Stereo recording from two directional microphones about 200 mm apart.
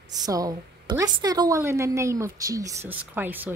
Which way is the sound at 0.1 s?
20° right (ahead or behind).